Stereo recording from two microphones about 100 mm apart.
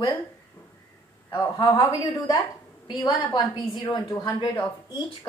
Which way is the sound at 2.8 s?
40° left (ahead or behind).